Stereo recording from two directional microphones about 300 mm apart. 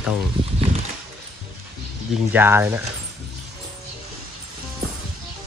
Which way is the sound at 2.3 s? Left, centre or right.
Centre.